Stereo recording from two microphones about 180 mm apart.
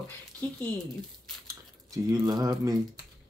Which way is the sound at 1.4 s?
20° right (ahead or behind).